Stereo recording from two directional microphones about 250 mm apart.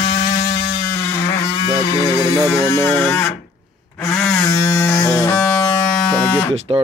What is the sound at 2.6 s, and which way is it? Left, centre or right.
Speech, centre.